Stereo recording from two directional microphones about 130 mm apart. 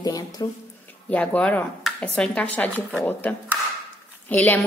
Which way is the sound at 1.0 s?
10° left (ahead or behind).